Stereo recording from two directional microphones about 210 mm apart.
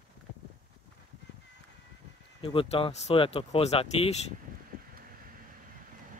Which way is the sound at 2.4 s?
25° left (ahead or behind).